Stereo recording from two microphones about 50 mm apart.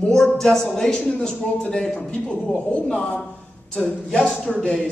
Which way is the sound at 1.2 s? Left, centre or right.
Left.